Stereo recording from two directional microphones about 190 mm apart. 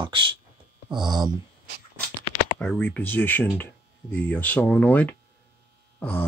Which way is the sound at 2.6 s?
10° left (ahead or behind).